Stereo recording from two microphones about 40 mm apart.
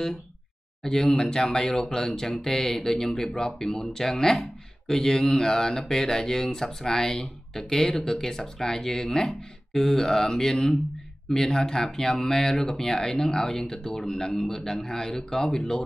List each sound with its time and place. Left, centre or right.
0.8 s speech: centre